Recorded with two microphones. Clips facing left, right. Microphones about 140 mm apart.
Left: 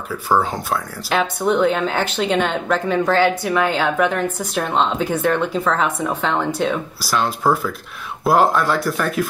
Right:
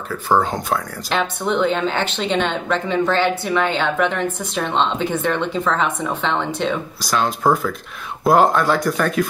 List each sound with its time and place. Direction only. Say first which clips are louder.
0.4 s speech: right 1 dB; 5° left (ahead or behind)